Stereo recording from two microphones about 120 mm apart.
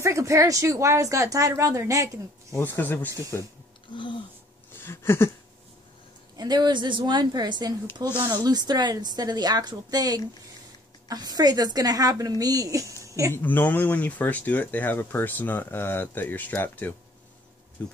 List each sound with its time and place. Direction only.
0.0 s speech: 25° right (ahead or behind)
2.5 s speech: 20° left (ahead or behind)
3.9 s speech: 40° left (ahead or behind)
4.7 s a sound: 20° left (ahead or behind)
6.3 s a woman's voice: 35° right (ahead or behind)
13.3 s speech: 15° left (ahead or behind)